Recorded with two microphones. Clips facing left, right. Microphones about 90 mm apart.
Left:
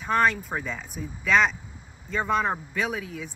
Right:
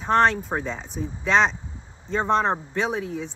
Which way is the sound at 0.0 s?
5° left (ahead or behind).